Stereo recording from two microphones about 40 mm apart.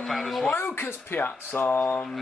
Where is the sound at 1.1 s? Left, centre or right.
Left.